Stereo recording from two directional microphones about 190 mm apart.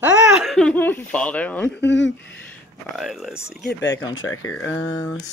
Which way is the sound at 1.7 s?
70° left (ahead or behind).